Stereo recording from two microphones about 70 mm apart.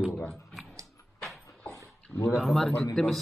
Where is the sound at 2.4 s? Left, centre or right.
Centre.